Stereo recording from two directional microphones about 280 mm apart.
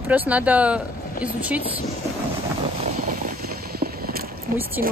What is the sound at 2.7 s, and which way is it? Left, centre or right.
Vehicle, right.